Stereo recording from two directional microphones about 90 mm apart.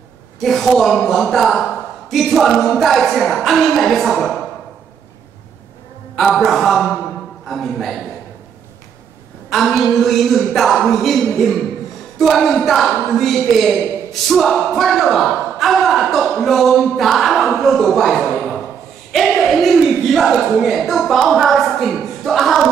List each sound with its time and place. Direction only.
0.4 s speech: centre (ahead or behind)
6.1 s speech: centre (ahead or behind)
9.5 s speech: centre (ahead or behind)